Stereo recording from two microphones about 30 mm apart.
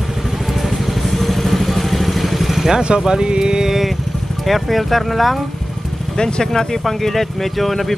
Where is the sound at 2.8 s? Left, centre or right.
Right.